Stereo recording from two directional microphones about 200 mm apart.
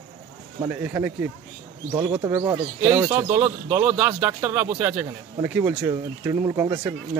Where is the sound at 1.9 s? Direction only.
20° right (ahead or behind).